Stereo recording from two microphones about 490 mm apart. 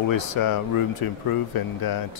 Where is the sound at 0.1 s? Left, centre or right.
Left.